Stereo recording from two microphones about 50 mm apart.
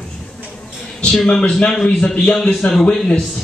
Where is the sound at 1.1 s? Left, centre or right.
Centre.